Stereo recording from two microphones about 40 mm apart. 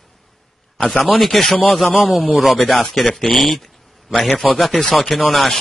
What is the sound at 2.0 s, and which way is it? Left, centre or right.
A man's voice, centre.